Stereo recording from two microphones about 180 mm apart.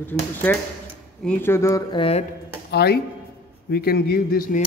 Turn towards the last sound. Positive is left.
turn(degrees=55)  # may be behind; listen again after turning